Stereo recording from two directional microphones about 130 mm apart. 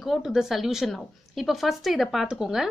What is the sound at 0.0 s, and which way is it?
Speech, centre (ahead or behind).